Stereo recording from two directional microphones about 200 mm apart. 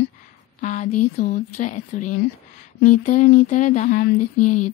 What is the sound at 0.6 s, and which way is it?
Speech, 40° left (ahead or behind).